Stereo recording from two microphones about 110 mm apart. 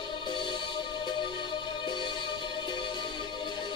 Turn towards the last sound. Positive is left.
turn(degrees=45)  # may be behind; listen again after turning